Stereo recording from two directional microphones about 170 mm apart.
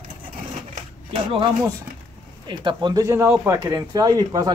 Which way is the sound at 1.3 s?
30° right (ahead or behind).